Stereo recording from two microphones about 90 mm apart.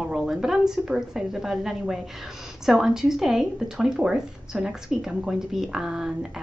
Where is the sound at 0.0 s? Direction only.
5° right (ahead or behind).